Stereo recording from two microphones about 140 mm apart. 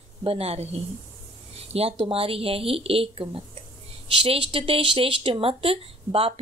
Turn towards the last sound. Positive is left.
turn(degrees=-40)  # may be behind; listen again after turning